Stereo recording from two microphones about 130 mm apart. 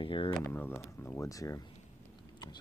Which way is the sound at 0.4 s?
15° left (ahead or behind).